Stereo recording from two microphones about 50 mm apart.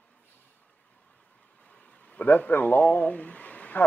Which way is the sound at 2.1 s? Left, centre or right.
Left.